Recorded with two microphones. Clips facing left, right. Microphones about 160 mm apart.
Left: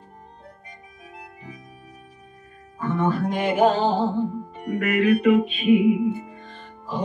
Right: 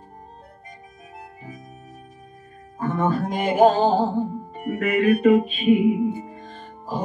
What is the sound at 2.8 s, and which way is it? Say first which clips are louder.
Music: even; 45° right (ahead or behind).